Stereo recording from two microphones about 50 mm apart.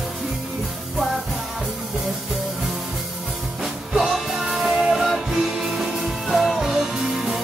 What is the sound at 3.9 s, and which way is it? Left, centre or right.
Music, centre.